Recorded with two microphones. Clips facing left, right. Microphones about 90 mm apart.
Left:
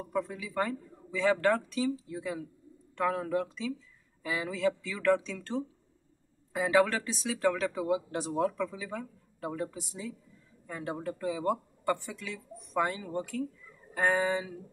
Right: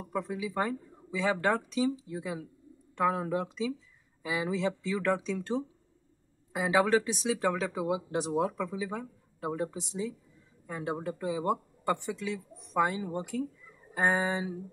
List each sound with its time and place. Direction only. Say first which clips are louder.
0.0 s speech: even; 15° right (ahead or behind)